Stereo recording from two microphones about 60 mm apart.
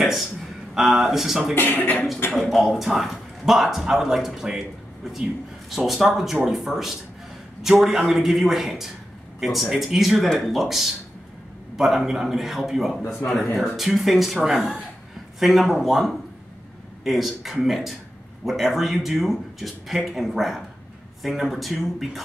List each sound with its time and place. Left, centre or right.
0.0 s speech: centre
1.5 s a man's voice: left
2.3 s a man's voice: centre
5.7 s a man's voice: centre